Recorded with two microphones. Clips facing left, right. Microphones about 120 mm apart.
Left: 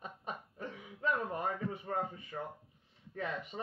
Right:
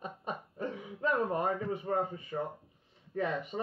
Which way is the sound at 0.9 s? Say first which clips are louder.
Right 4 dB; 25° right (ahead or behind).